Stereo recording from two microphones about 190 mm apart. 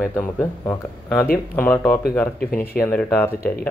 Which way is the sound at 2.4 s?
50° left (ahead or behind).